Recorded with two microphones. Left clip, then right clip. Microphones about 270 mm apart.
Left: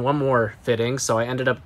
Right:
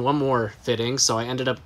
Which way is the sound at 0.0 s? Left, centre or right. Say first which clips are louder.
Left 2 dB; centre.